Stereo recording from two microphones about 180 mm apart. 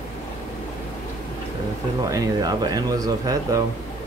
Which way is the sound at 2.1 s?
20° right (ahead or behind).